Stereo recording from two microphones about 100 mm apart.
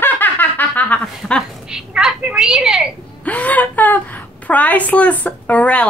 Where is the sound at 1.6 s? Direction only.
5° right (ahead or behind).